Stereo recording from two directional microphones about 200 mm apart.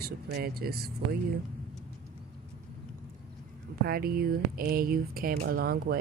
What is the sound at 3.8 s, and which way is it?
Speech, 50° right (ahead or behind).